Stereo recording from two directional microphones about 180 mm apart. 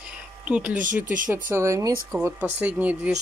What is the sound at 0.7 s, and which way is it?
Speech, 45° right (ahead or behind).